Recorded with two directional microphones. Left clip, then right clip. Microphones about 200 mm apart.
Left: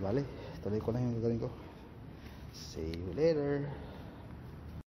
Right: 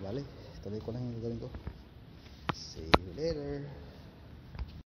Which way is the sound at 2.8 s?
10° left (ahead or behind).